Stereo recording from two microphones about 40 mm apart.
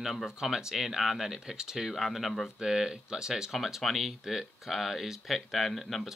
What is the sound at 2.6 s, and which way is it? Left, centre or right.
Speech, centre.